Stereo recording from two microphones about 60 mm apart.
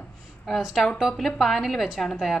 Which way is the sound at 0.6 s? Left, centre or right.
Centre.